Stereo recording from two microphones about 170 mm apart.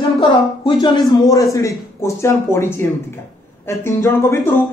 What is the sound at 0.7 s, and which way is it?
A man's voice, 25° left (ahead or behind).